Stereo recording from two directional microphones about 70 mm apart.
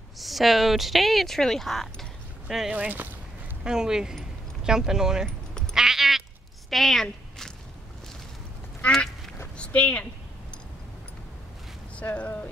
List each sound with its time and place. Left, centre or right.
0.2 s speech: centre
2.7 s speech: right
3.6 s speech: centre
5.5 s cat: centre
5.8 s cat: centre
6.7 s speech: centre
8.9 s quack: centre
9.6 s speech: centre
12.0 s speech: centre